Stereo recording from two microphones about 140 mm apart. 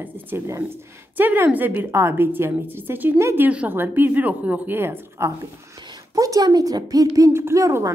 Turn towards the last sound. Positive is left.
turn(degrees=-20)  # may be behind; listen again after turning